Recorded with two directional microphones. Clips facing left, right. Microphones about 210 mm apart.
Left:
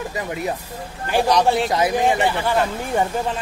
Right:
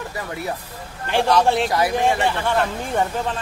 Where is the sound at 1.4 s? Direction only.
Centre (ahead or behind).